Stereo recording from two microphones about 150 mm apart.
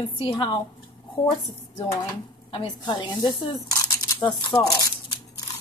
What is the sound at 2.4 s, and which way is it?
A woman's voice, 30° left (ahead or behind).